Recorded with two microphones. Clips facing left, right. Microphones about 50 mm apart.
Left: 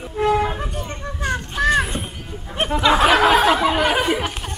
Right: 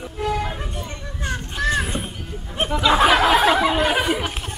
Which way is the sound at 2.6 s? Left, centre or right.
Centre.